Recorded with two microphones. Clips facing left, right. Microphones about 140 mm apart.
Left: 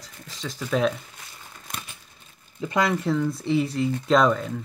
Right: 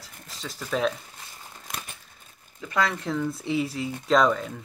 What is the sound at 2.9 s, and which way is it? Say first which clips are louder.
Speech: left 4 dB; centre (ahead or behind).